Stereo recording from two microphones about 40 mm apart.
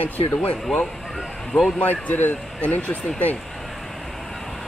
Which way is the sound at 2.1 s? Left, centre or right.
Left.